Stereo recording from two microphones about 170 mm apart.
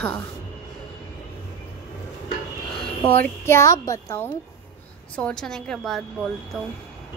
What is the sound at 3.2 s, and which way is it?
A woman's voice, 15° left (ahead or behind).